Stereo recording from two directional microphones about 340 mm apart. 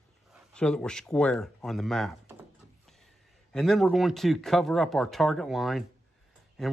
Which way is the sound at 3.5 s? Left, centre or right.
Centre.